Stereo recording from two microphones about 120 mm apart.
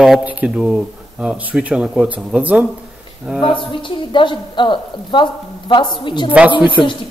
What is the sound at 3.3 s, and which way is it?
A woman's voice, 45° left (ahead or behind).